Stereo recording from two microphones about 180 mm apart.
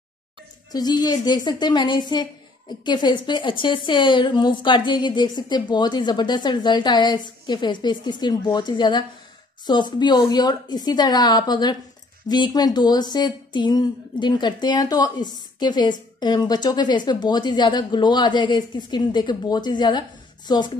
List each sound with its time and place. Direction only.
0.7 s a woman's voice: 20° left (ahead or behind)